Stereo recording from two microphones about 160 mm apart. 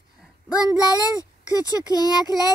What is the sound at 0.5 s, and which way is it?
Speech, 20° left (ahead or behind).